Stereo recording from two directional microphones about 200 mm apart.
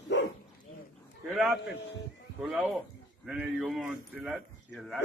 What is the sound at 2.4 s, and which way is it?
Speech, centre (ahead or behind).